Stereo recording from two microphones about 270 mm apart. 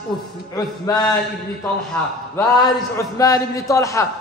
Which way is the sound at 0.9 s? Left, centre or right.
Centre.